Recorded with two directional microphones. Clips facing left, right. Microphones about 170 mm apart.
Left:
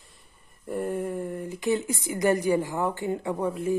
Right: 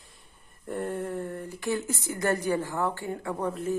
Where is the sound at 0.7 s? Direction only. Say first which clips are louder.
Left 2 dB; 10° left (ahead or behind).